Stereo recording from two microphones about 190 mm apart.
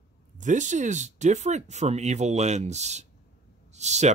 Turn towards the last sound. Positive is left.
turn(degrees=-35)  # may be behind; listen again after turning